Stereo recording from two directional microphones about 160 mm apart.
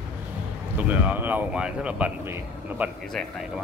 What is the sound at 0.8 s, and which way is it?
Speech, 10° right (ahead or behind).